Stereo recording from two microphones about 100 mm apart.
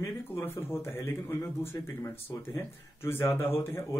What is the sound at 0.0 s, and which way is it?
Speech, 25° left (ahead or behind).